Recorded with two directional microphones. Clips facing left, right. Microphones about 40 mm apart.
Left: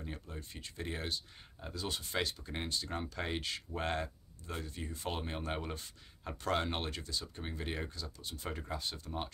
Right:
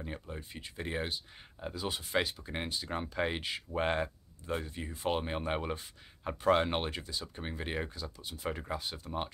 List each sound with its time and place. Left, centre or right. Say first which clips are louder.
0.0 s speech: right 4 dB; right